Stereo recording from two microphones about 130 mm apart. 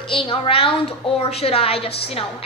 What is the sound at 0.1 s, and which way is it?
A woman's voice, 40° left (ahead or behind).